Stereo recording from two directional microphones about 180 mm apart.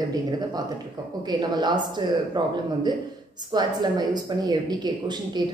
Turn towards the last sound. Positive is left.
turn(degrees=-25)  # may be behind; listen again after turning